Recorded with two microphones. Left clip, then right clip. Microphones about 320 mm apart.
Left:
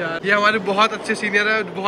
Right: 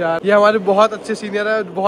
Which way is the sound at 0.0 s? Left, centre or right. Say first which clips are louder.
Right 5 dB; centre.